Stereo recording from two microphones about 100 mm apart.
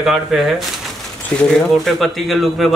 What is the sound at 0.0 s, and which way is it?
A man's voice, 5° right (ahead or behind).